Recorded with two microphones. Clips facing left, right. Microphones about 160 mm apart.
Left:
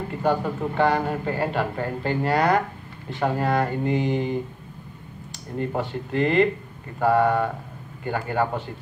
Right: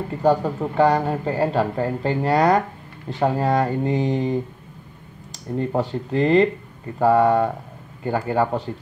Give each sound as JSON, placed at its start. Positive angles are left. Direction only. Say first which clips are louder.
{"t": 0.2, "sound": "a man's voice", "louder": "right 4 dB", "side_deg": -40}
{"t": 5.6, "sound": "a man's voice", "louder": "right 3 dB", "side_deg": -35}